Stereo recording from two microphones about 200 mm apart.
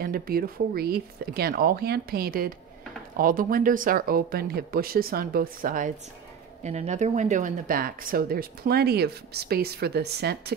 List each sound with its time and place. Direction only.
0.0 s speech: 50° right (ahead or behind)